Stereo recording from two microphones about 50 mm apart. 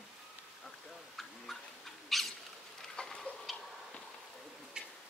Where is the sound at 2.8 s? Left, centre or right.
Centre.